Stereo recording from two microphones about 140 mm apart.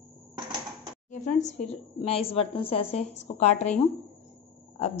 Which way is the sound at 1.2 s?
55° left (ahead or behind).